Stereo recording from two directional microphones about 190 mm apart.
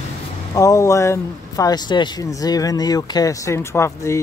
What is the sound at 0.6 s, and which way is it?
Speech, 15° left (ahead or behind).